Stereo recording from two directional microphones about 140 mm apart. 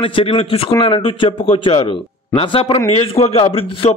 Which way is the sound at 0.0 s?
40° left (ahead or behind).